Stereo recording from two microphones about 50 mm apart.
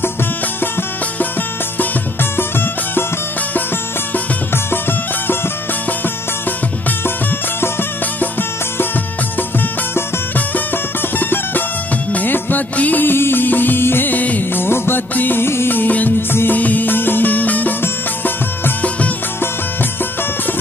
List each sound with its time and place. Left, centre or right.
8.2 s music: left
11.1 s music: left
13.1 s music: left
14.6 s music: left
16.2 s music: left
16.5 s music: left
17.8 s music: left